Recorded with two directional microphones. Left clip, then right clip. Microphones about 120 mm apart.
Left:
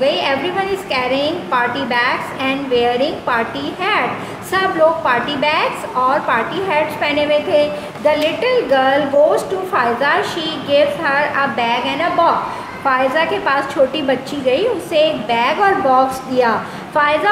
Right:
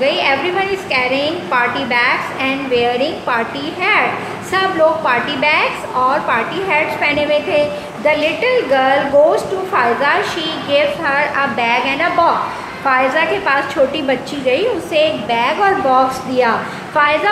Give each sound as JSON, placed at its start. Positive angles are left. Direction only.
{"t": 0.0, "sound": "a woman's voice", "side_deg": 35}